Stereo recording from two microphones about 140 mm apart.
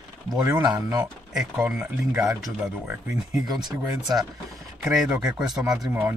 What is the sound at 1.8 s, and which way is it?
Speech, 15° right (ahead or behind).